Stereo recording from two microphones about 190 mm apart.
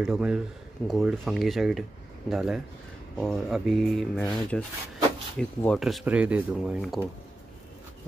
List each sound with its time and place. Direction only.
0.0 s speech: 5° right (ahead or behind)